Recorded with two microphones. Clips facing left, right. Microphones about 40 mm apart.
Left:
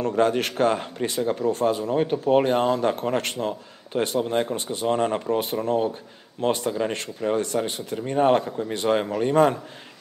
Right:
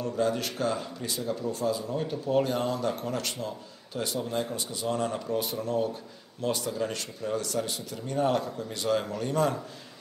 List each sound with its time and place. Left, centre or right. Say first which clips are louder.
0.0 s speech: left 7 dB; left